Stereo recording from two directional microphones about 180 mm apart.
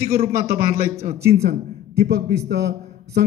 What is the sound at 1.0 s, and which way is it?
A man's voice, 60° right (ahead or behind).